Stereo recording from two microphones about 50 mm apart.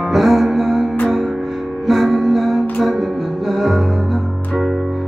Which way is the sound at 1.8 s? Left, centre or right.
Centre.